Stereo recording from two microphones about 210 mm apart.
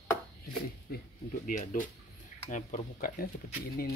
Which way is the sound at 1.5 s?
40° left (ahead or behind).